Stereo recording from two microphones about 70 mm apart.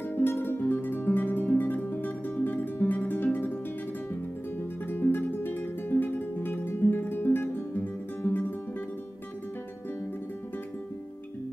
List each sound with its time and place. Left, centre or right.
0.1 s music: left
4.8 s music: left